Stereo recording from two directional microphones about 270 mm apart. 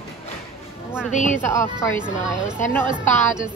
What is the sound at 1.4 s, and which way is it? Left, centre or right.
Speech, centre.